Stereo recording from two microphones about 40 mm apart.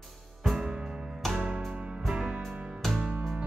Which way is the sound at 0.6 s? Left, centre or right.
Right.